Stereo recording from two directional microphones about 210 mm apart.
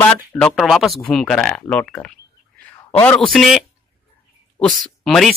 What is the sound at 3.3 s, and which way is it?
Speech, centre (ahead or behind).